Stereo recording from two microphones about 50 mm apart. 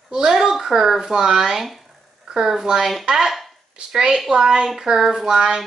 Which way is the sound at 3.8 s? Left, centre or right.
Centre.